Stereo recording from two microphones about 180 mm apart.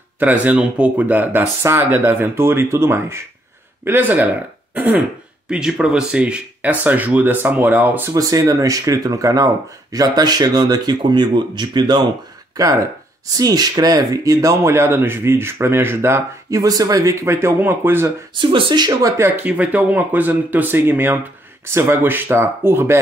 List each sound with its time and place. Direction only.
0.2 s speech: 10° right (ahead or behind); by 12.1 s 25° right (ahead or behind)
13.4 s speech: 20° right (ahead or behind)
18.3 s speech: 25° right (ahead or behind)